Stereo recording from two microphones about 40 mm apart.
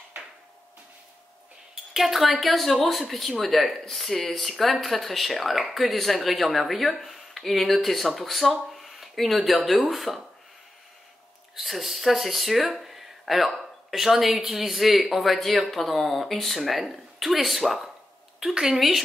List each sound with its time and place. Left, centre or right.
2.0 s speech: centre
11.5 s speech: centre